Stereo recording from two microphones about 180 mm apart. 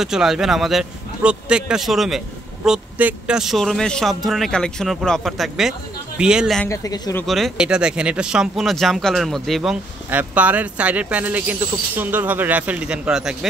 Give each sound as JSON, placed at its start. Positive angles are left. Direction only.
{"t": 0.0, "sound": "a man's voice", "side_deg": -5}
{"t": 6.6, "sound": "speech", "side_deg": 15}
{"t": 7.2, "sound": "a man's voice", "side_deg": 0}